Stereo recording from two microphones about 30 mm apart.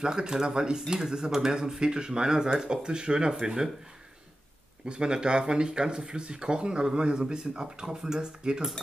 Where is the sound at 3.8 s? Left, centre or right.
Right.